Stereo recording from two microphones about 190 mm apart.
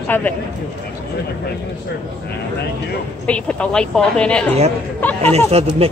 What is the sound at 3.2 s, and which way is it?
A woman's voice, 5° left (ahead or behind).